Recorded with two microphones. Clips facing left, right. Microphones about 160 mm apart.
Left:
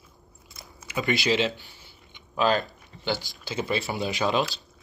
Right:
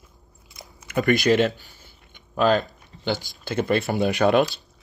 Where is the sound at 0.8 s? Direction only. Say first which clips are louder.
Right 6 dB; 50° right (ahead or behind).